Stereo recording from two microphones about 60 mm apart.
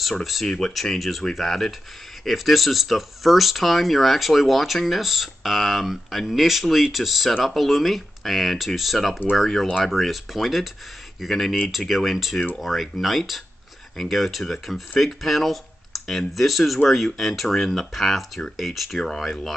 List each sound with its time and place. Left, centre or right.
0.0 s speech: centre